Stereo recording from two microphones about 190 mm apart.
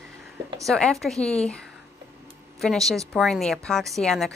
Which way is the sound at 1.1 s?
35° left (ahead or behind).